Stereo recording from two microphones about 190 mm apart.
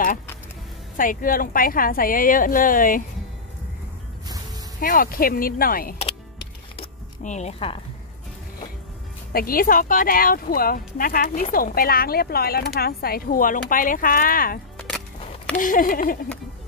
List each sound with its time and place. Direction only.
0.9 s speech: 45° left (ahead or behind)
4.7 s speech: 45° left (ahead or behind)
6.8 s zipper: 35° left (ahead or behind)
9.3 s speech: 50° left (ahead or behind)